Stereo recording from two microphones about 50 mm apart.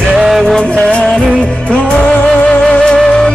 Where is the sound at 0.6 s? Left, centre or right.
Left.